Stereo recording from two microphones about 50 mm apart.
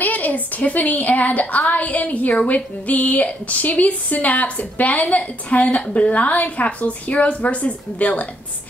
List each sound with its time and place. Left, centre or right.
0.0 s a woman's voice: left